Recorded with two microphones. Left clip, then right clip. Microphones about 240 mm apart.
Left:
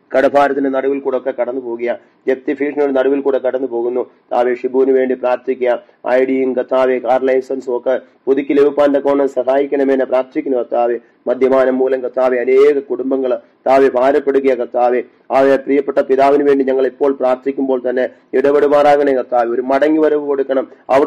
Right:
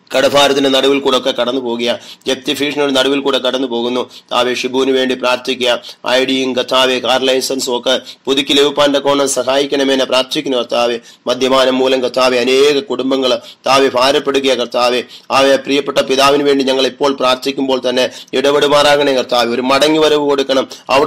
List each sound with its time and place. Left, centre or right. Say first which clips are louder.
0.1 s a man's voice: right 1 dB; right